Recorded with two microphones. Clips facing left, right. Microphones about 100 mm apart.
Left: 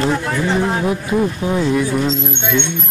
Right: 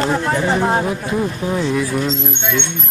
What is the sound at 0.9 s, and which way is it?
Speech, 5° left (ahead or behind).